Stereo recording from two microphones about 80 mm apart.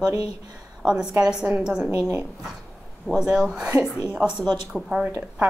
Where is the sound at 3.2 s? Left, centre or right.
Centre.